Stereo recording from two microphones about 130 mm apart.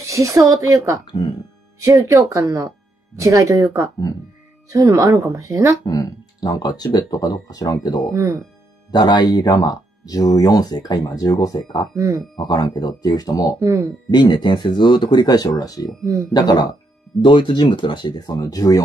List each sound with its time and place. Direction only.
0.0 s speech: 25° right (ahead or behind)
1.0 s speech: 40° left (ahead or behind)
1.8 s speech: 25° right (ahead or behind)
4.6 s speech: 25° right (ahead or behind)
5.9 s speech: 30° left (ahead or behind)
8.1 s speech: 20° right (ahead or behind)
8.9 s speech: 35° left (ahead or behind)
11.9 s speech: 25° right (ahead or behind)
12.4 s speech: 35° left (ahead or behind)
13.6 s speech: 25° right (ahead or behind)
14.1 s speech: 35° left (ahead or behind)
16.0 s speech: 25° right (ahead or behind)
16.3 s speech: 30° left (ahead or behind)